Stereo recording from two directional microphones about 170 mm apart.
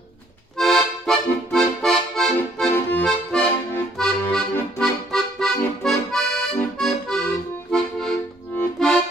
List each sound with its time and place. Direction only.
0.6 s music: 5° left (ahead or behind)
5.9 s accordion: 5° left (ahead or behind)